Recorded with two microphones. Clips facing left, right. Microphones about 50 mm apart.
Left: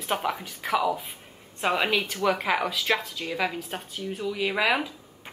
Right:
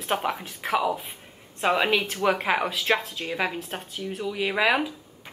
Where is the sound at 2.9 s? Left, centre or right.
Right.